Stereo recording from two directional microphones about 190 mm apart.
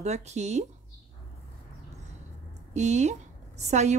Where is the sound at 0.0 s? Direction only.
35° right (ahead or behind).